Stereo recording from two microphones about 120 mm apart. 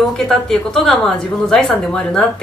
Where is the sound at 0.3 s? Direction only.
5° left (ahead or behind).